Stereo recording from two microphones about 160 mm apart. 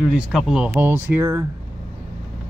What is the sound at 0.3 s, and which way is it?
Speech, centre (ahead or behind).